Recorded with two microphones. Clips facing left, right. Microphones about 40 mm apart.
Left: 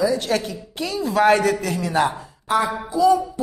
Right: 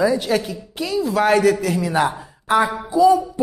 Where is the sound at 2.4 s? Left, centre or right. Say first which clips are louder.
Right 3 dB; right.